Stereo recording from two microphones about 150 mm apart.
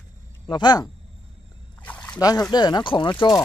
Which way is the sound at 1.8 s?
10° left (ahead or behind).